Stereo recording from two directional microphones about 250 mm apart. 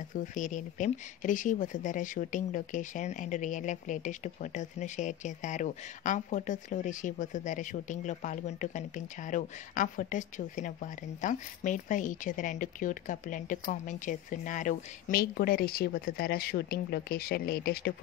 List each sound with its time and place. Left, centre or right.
0.1 s speech: left